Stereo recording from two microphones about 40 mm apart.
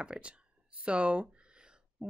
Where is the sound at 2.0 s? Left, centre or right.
Centre.